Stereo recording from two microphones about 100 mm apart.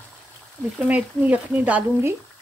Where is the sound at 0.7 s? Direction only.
15° right (ahead or behind).